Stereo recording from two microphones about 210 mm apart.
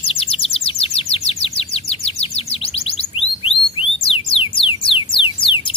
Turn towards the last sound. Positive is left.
turn(degrees=25)  # may be behind; listen again after turning